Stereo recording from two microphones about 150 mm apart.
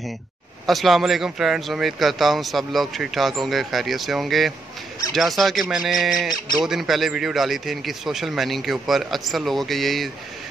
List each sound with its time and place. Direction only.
0.7 s speech: centre (ahead or behind)